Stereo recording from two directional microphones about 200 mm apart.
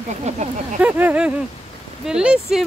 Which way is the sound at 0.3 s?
35° right (ahead or behind).